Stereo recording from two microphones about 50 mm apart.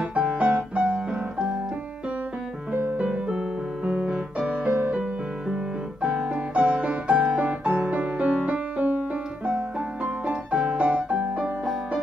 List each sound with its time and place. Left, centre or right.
0.1 s piano: centre
0.4 s piano: right
2.7 s piano: right
4.4 s music: centre
6.0 s music: centre
10.0 s piano: right
10.9 s music: right